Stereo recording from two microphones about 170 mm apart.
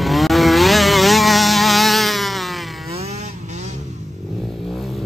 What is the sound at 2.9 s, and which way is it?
Vehicle, 35° right (ahead or behind).